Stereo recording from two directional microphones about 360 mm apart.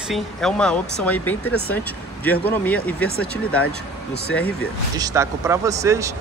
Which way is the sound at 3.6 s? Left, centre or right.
Left.